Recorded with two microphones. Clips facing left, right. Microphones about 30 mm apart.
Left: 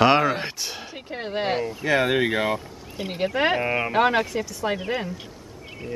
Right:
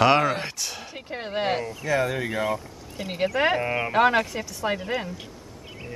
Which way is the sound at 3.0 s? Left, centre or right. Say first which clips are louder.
Even; left.